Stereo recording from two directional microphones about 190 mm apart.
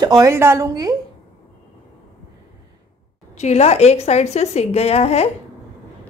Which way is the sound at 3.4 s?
35° left (ahead or behind).